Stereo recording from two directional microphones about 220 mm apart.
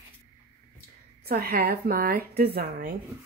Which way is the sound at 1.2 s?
45° right (ahead or behind).